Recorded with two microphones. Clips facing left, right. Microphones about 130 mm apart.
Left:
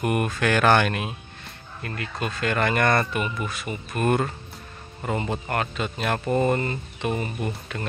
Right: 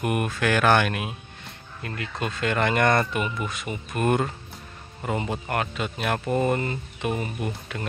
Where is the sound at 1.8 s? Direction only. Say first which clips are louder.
Even; 20° right (ahead or behind).